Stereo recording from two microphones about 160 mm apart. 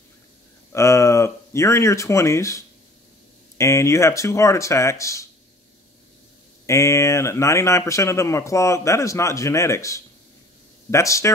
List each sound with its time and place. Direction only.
0.7 s speech: 20° left (ahead or behind)
6.6 s speech: 20° left (ahead or behind)